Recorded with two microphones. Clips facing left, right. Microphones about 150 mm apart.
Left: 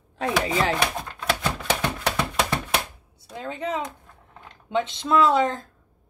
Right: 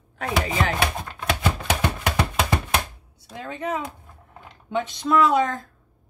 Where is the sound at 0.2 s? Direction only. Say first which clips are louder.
Left 1 dB; 30° left (ahead or behind).